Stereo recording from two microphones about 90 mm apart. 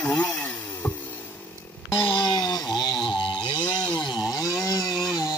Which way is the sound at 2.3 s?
45° left (ahead or behind).